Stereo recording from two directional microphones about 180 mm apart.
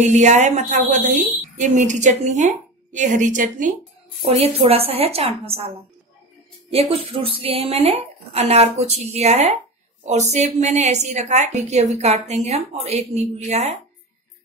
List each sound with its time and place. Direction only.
0.0 s a woman's voice: 40° right (ahead or behind)
4.2 s a woman's voice: 35° right (ahead or behind)
6.7 s a woman's voice: 30° right (ahead or behind)